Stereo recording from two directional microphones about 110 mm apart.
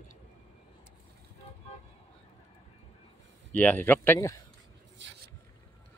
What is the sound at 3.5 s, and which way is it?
Speech, 15° left (ahead or behind).